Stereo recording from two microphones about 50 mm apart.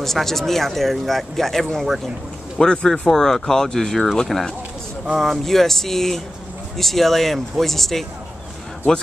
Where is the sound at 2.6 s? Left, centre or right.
Centre.